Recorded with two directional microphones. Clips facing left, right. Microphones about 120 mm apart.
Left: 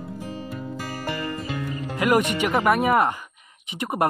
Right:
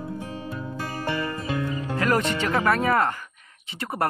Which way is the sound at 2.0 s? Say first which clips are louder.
Left 3 dB; 15° left (ahead or behind).